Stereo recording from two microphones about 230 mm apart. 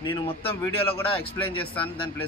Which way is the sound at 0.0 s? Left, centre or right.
Left.